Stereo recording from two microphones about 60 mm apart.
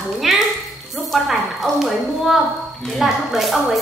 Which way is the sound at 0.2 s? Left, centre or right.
Centre.